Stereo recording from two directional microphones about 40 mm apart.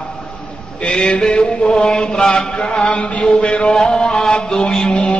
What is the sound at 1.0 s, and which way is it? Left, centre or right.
Chant, left.